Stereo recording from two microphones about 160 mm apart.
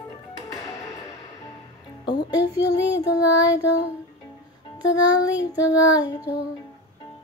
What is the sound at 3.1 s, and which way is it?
Child singing, 25° left (ahead or behind).